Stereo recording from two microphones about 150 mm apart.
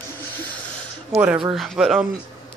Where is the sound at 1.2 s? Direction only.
5° right (ahead or behind).